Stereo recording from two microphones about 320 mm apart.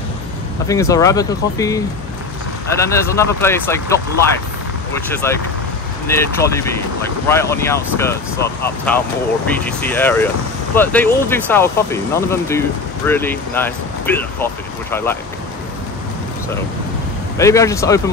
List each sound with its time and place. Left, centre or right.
0.7 s speech: centre
2.8 s speech: centre
17.4 s speech: centre